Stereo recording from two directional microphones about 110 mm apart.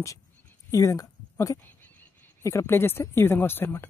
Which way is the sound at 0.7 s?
30° left (ahead or behind).